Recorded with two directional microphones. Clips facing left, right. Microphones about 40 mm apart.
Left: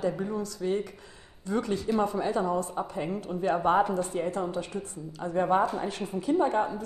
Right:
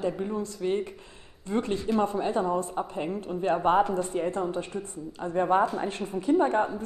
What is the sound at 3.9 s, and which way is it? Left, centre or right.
A woman's voice, right.